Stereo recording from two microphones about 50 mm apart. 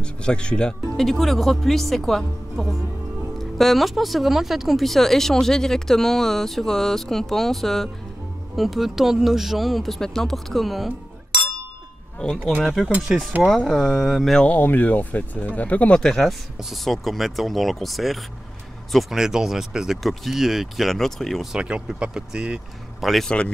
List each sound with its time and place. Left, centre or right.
0.0 s speech: centre
1.0 s speech: centre
12.6 s speech: centre
14.6 s speech: left
15.9 s speech: centre
21.5 s speech: centre
23.2 s speech: centre